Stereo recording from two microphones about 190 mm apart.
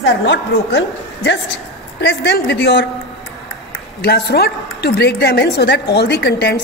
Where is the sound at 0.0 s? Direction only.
70° left (ahead or behind).